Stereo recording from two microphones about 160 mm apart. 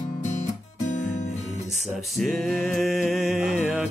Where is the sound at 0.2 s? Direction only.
45° left (ahead or behind).